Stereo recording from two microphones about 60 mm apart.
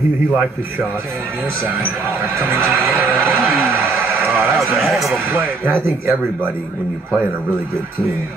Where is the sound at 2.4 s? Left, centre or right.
Right.